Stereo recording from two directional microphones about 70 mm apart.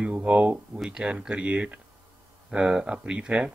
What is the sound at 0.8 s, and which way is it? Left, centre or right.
Speech, centre.